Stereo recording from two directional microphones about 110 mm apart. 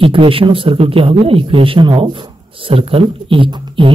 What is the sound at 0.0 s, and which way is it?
Speech, 55° right (ahead or behind).